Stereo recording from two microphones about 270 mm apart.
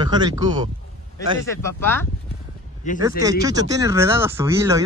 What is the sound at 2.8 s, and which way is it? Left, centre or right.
Speech, left.